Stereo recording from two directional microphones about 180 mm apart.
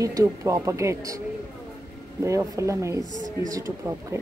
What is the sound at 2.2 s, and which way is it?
Speech, 15° right (ahead or behind).